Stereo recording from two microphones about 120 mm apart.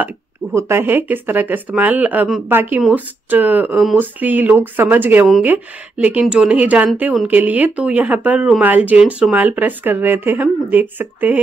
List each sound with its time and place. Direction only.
0.0 s speech: 20° right (ahead or behind)